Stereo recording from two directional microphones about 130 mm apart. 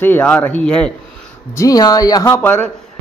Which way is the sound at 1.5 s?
25° left (ahead or behind).